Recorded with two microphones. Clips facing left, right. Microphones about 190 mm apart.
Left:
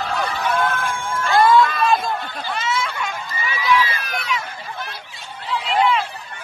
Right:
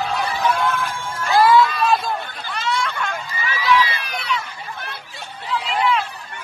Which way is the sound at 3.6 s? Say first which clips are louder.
Right 1 dB; 45° left (ahead or behind).